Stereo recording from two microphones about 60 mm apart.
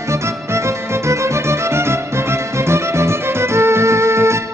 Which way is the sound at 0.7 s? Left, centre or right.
Right.